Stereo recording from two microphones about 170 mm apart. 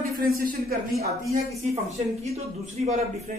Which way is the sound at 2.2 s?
40° right (ahead or behind).